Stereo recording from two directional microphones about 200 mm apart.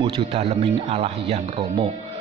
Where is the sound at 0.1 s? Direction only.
30° right (ahead or behind).